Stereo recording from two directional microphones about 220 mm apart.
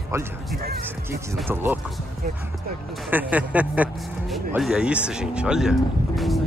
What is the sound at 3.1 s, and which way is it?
Speech, 5° right (ahead or behind).